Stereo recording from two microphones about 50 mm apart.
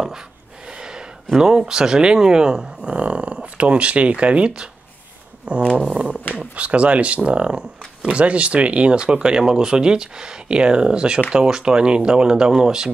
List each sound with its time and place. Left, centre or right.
0.7 s speech: centre
5.4 s a sound: right
6.4 s speech: right